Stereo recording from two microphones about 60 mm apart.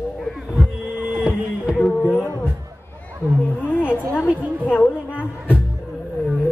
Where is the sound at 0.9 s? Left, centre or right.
Centre.